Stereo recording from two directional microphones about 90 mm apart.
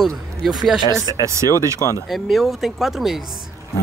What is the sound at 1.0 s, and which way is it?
Speech, 45° right (ahead or behind).